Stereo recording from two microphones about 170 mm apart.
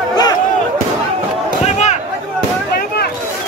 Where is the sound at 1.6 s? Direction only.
45° left (ahead or behind).